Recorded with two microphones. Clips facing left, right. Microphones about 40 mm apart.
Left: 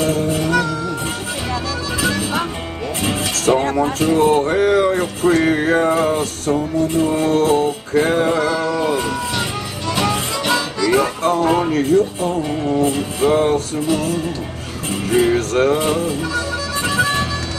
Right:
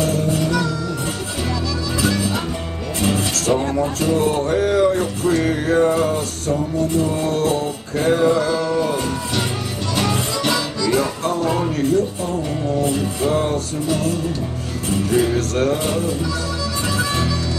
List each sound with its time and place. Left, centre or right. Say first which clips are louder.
0.0 s music: left 1 dB; left
2.0 s music: left 2 dB; left
3.7 s a sound: left 3 dB; left
8.6 s music: left 1 dB; left
10.5 s music: left 5 dB; left
15.0 s a sound: left 4 dB; left
16.9 s music: left 4 dB; left